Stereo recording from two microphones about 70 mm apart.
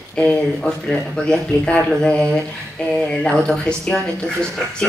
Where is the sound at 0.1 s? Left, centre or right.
Centre.